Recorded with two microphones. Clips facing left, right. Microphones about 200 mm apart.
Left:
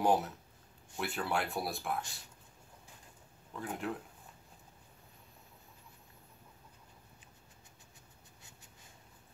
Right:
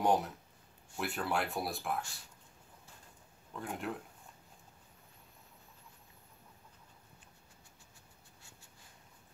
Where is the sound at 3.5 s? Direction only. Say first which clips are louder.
Left 1 dB; centre (ahead or behind).